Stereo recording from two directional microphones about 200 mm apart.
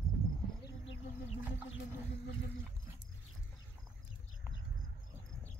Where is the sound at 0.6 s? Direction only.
65° left (ahead or behind).